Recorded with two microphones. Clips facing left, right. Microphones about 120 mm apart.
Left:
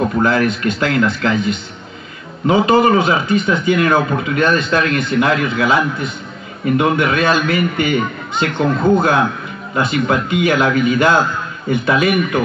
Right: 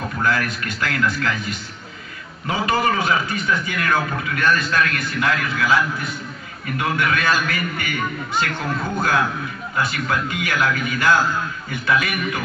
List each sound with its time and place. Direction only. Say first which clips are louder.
0.0 s a man's voice: left 8 dB; 25° left (ahead or behind)